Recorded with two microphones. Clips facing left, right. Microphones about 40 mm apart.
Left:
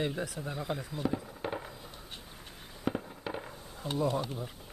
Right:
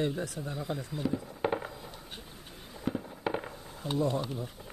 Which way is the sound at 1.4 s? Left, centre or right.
Centre.